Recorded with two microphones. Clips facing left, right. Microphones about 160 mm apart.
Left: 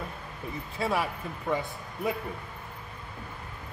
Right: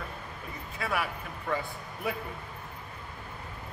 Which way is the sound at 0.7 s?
25° left (ahead or behind).